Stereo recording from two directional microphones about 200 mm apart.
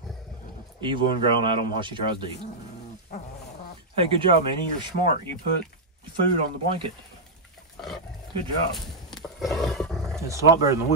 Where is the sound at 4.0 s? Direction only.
25° right (ahead or behind).